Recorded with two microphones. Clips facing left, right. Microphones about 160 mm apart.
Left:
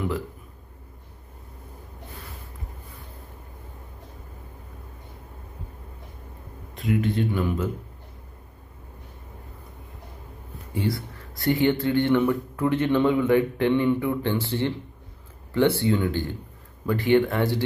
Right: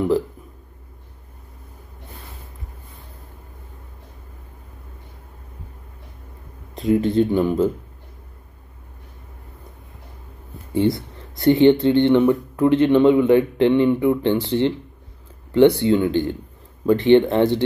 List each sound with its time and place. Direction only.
6.9 s speech: 30° right (ahead or behind)
10.7 s speech: 25° right (ahead or behind)